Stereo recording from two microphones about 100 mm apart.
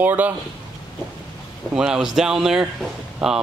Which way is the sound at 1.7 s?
5° right (ahead or behind).